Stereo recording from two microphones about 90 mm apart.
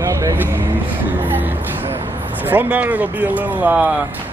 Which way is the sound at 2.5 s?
20° right (ahead or behind).